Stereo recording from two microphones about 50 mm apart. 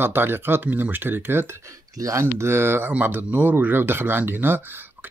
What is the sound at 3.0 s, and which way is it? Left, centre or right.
Speech, right.